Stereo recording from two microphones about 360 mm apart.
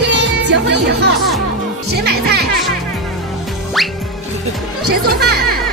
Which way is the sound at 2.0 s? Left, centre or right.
Right.